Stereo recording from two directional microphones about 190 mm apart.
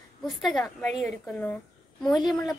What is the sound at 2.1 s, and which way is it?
Speech, 20° left (ahead or behind).